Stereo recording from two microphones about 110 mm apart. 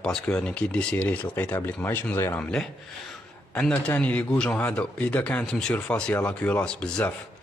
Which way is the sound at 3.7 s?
15° left (ahead or behind).